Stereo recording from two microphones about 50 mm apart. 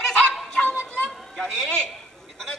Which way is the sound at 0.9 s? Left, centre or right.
Centre.